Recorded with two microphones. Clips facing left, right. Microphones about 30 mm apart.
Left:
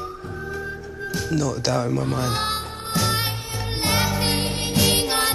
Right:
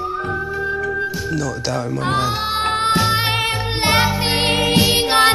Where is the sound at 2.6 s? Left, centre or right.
Right.